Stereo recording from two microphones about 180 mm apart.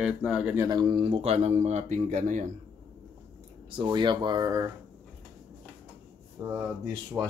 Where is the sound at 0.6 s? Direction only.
25° right (ahead or behind); by 2.5 s 45° right (ahead or behind).